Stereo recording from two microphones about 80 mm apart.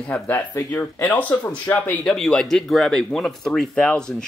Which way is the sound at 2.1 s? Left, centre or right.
Centre.